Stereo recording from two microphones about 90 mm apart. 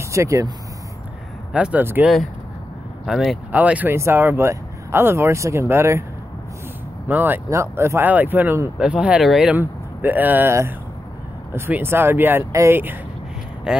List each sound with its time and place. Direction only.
0.1 s speech: 35° right (ahead or behind)
1.5 s speech: 15° right (ahead or behind)
3.1 s speech: 5° right (ahead or behind)
3.5 s speech: 15° right (ahead or behind)
3.9 s speech: 25° right (ahead or behind)
7.1 s speech: 20° right (ahead or behind)
7.4 s speech: 30° right (ahead or behind)
8.7 s speech: 10° right (ahead or behind)
9.2 s speech: centre (ahead or behind)
9.6 s speech: 20° right (ahead or behind)
13.7 s speech: 5° right (ahead or behind)